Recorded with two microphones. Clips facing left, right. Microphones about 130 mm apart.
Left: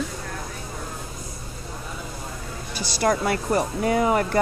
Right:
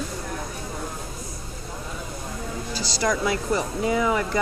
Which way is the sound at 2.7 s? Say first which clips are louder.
Left 3 dB; 60° left (ahead or behind).